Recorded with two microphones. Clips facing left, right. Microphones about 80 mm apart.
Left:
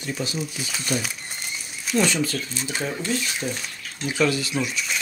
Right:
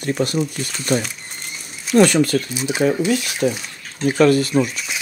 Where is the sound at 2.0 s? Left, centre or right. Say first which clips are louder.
Right 9 dB; right.